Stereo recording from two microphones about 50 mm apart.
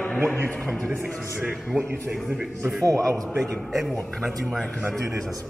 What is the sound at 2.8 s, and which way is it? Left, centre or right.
Speech, right.